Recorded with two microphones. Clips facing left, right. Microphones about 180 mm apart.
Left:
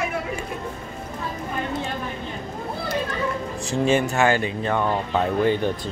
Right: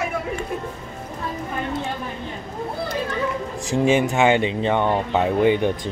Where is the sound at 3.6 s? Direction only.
15° right (ahead or behind).